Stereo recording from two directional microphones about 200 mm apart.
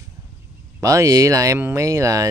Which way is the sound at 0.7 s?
15° right (ahead or behind).